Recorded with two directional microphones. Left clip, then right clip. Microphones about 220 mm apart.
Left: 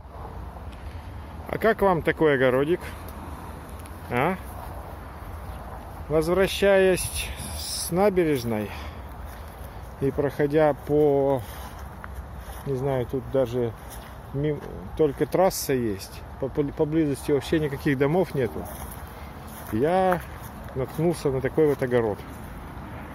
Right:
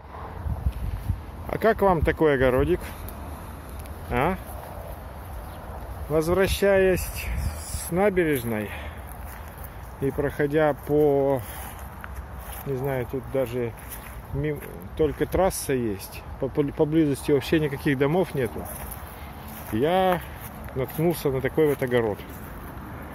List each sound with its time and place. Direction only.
1.5 s speech: 5° right (ahead or behind)
4.1 s a sound: centre (ahead or behind)
6.1 s speech: centre (ahead or behind)
10.0 s speech: 10° left (ahead or behind)
12.7 s speech: 15° left (ahead or behind)
16.5 s speech: 15° right (ahead or behind); by 18.5 s 5° left (ahead or behind)
19.7 s speech: 5° left (ahead or behind)